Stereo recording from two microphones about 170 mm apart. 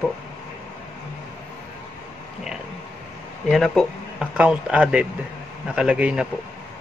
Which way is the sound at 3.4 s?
Centre (ahead or behind).